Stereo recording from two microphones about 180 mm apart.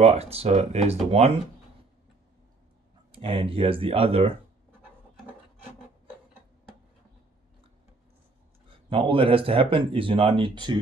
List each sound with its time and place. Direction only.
0.0 s speech: 35° right (ahead or behind)
3.1 s speech: 30° right (ahead or behind)
8.6 s speech: 30° right (ahead or behind)